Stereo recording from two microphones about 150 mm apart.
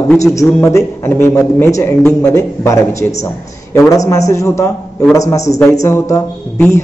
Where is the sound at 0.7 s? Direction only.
15° left (ahead or behind).